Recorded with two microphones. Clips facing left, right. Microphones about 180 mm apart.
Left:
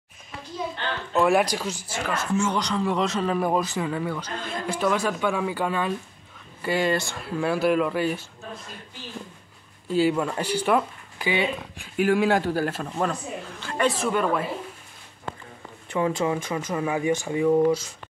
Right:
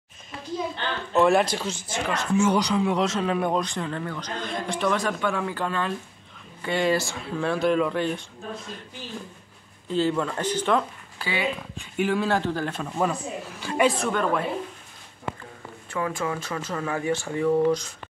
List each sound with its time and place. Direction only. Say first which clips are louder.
1.1 s speech: right 1 dB; 5° left (ahead or behind)
2.0 s speech: right 3 dB; 5° right (ahead or behind)
9.8 s speech: left 2 dB; 10° left (ahead or behind)
12.9 s speech: right 1 dB; 10° right (ahead or behind)
13.8 s speech: left 2 dB; 5° left (ahead or behind)
15.9 s speech: left 4 dB; 20° left (ahead or behind)